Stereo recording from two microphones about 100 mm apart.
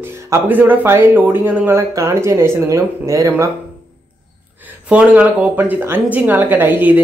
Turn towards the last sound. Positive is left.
turn(degrees=-20)  # may be behind; listen again after turning